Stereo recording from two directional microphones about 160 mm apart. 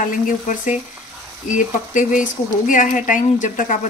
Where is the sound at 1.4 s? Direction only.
50° left (ahead or behind).